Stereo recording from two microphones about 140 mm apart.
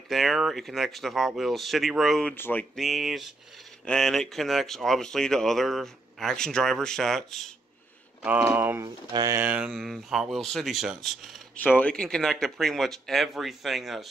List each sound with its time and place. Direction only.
0.1 s speech: centre (ahead or behind)
2.3 s speech: 15° left (ahead or behind)
2.7 s speech: centre (ahead or behind)
8.2 s speech: 10° right (ahead or behind)
8.8 s speech: 30° right (ahead or behind)
9.4 s speech: 10° right (ahead or behind)